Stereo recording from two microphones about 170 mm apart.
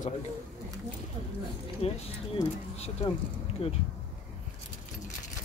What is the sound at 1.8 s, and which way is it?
Speech, 40° left (ahead or behind).